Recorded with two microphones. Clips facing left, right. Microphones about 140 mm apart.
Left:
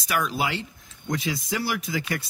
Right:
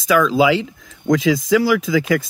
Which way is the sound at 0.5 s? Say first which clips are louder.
Right 13 dB; 90° right.